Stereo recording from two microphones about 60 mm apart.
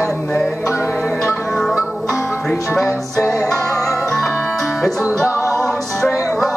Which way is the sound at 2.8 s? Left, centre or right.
Left.